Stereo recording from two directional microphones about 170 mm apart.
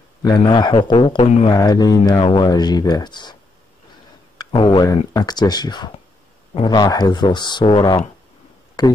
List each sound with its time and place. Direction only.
0.2 s speech: 25° left (ahead or behind)
4.4 s speech: 30° left (ahead or behind)